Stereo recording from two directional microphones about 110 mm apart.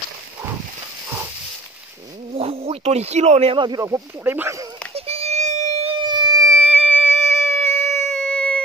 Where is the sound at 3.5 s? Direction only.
45° right (ahead or behind).